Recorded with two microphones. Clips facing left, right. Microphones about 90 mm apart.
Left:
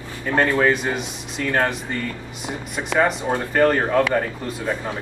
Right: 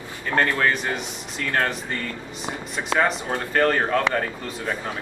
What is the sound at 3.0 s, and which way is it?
Speech, 15° left (ahead or behind).